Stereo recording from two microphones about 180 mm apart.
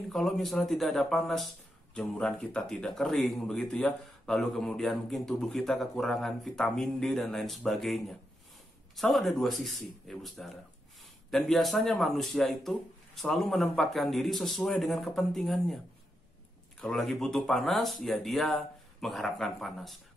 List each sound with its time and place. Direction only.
0.1 s speech: centre (ahead or behind)
16.8 s speech: centre (ahead or behind)